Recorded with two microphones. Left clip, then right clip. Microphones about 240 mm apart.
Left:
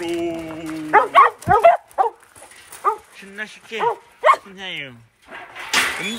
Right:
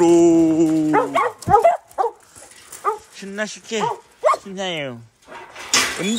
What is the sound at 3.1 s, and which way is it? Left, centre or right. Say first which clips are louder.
Speech: right 5 dB; centre.